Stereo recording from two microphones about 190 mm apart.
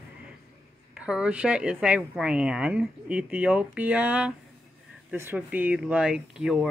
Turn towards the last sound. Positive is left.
turn(degrees=0)  # may be behind; listen again after turning